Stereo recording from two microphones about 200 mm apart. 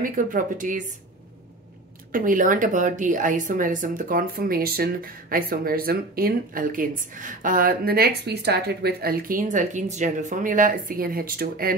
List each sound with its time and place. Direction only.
0.0 s a woman's voice: 45° right (ahead or behind)
2.1 s speech: 40° right (ahead or behind)